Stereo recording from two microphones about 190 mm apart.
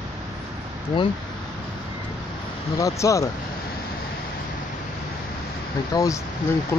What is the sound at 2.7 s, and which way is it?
Speech, 15° left (ahead or behind).